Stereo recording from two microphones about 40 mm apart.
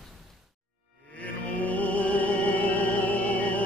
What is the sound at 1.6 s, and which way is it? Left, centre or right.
Music, left.